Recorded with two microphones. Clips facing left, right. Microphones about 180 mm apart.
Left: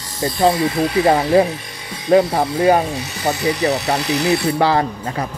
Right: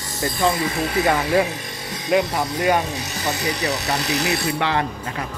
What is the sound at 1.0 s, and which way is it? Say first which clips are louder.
Speech: left 5 dB; 30° left (ahead or behind).